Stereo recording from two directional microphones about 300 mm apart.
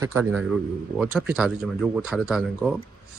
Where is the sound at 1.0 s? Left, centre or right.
Centre.